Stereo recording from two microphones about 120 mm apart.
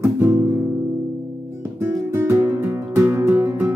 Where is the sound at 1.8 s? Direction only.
20° right (ahead or behind).